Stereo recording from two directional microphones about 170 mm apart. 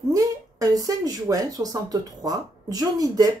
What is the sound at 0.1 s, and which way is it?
Speech, 20° right (ahead or behind).